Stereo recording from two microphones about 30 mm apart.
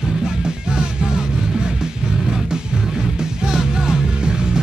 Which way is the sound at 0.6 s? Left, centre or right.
Right.